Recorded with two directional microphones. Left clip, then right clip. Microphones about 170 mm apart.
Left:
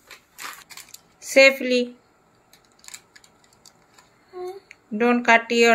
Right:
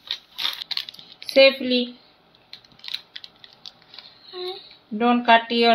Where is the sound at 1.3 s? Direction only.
5° left (ahead or behind).